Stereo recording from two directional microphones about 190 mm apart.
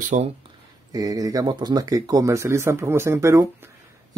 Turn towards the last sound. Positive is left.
turn(degrees=-15)  # may be behind; listen again after turning